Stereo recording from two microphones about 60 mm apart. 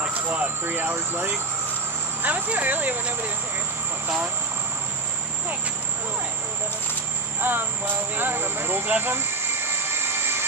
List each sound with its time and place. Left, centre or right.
0.0 s vehicle: right
0.7 s speech: right
2.2 s speech: right
7.4 s speech: right
9.8 s helicopter: right